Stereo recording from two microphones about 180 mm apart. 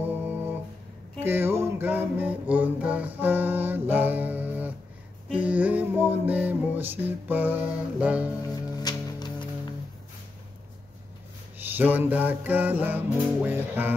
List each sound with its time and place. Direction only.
0.0 s music: 10° right (ahead or behind)
8.4 s music: 20° left (ahead or behind)
11.5 s music: 10° right (ahead or behind)